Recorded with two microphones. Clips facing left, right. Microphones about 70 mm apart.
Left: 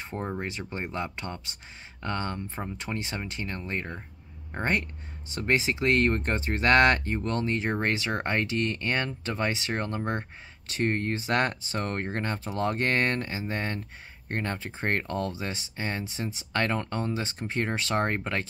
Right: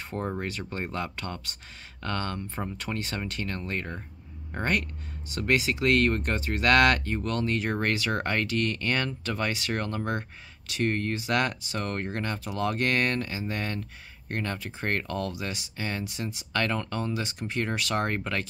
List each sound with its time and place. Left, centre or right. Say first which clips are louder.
0.0 s speech: right 1 dB; left